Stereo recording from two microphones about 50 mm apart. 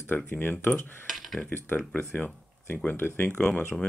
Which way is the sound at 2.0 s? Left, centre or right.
Left.